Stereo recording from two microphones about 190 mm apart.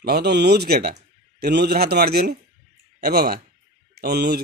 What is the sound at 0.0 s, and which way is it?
Speech, 55° right (ahead or behind).